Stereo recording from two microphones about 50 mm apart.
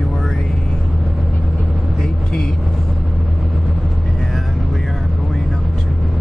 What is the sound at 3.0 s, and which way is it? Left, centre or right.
Vehicle, right.